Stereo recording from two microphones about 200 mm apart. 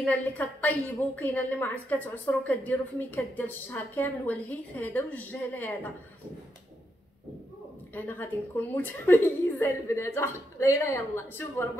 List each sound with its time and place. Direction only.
0.0 s a woman's voice: 10° left (ahead or behind)
7.9 s a woman's voice: 10° left (ahead or behind)